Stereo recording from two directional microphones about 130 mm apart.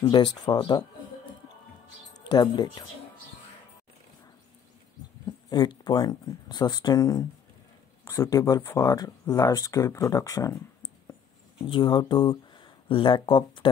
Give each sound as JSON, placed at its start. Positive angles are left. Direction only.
{"t": 0.0, "sound": "speech", "side_deg": 35}
{"t": 2.1, "sound": "speech", "side_deg": 30}
{"t": 5.2, "sound": "speech", "side_deg": 35}
{"t": 11.1, "sound": "a sound", "side_deg": 30}